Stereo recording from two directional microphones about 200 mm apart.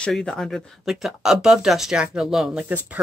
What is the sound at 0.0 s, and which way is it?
Speech, 5° left (ahead or behind).